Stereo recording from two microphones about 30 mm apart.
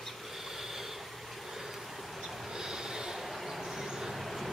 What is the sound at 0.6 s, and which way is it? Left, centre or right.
Train, centre.